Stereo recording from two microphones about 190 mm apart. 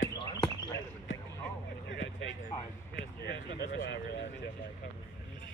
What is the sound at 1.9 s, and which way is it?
Speech, 70° left (ahead or behind).